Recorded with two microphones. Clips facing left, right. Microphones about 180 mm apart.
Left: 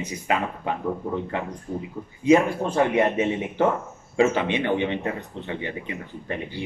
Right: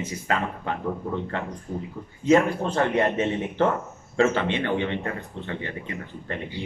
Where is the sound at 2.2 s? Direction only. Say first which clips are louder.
Left 1 dB; 10° left (ahead or behind).